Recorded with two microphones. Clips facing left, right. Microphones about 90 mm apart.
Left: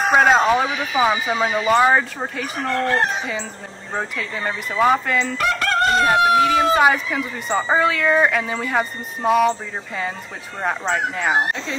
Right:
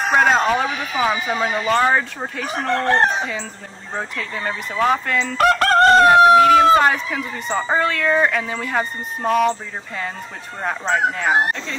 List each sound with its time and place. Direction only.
0.1 s a woman's voice: 5° left (ahead or behind)
2.7 s speech: 35° right (ahead or behind)
3.9 s a woman's voice: 5° left (ahead or behind)
5.4 s crowing: 45° right (ahead or behind)
6.3 s a woman's voice: centre (ahead or behind)